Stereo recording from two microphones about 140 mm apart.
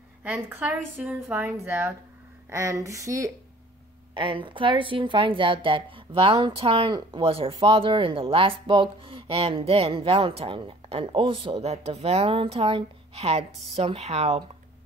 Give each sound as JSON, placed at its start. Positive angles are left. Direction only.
{"t": 0.2, "sound": "speech", "side_deg": -10}
{"t": 4.1, "sound": "a woman's voice", "side_deg": -35}